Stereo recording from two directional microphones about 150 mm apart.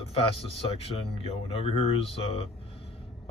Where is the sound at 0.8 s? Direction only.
40° left (ahead or behind).